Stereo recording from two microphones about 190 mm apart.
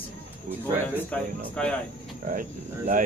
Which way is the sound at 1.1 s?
5° left (ahead or behind).